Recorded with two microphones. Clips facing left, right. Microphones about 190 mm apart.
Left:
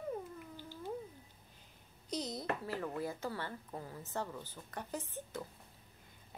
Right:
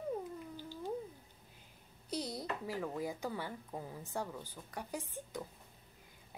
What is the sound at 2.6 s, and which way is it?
A woman's voice, 10° right (ahead or behind).